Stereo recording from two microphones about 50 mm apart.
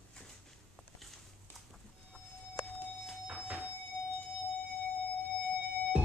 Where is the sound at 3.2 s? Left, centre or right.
Right.